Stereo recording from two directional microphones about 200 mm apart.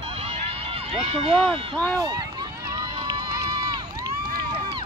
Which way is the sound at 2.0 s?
20° right (ahead or behind).